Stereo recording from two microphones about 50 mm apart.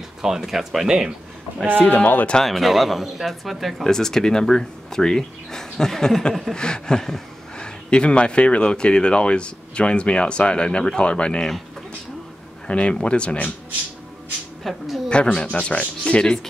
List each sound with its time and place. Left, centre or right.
0.2 s speech: centre
1.9 s speech: left
2.4 s speech: centre
3.8 s speech: centre
6.5 s speech: centre
12.6 s speech: left
14.6 s speech: centre
15.0 s speech: left